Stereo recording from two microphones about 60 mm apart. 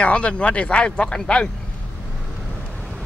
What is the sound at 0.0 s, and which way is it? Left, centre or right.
Speech, centre.